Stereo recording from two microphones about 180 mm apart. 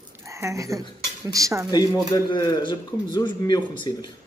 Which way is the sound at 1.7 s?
20° left (ahead or behind).